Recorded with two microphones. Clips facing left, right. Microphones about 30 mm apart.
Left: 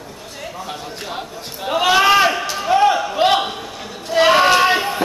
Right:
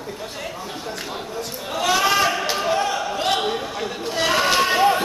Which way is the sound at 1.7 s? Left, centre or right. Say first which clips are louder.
Left 6 dB; left.